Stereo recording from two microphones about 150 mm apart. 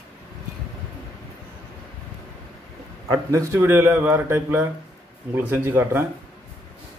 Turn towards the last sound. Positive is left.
turn(degrees=-15)  # may be behind; listen again after turning